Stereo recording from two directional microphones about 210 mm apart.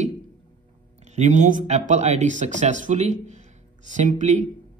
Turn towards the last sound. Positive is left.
turn(degrees=-35)  # may be behind; listen again after turning